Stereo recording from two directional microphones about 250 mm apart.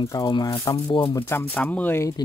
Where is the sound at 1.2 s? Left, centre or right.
Centre.